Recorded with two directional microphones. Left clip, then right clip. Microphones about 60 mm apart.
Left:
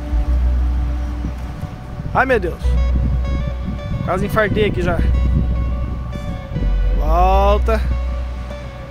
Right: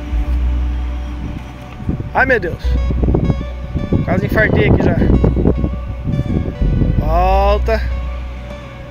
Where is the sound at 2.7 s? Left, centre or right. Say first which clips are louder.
Right 9 dB; centre.